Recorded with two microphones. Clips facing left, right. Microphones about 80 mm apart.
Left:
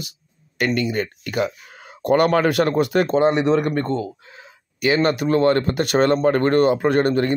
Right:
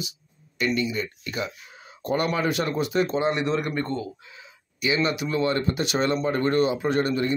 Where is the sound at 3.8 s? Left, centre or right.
Left.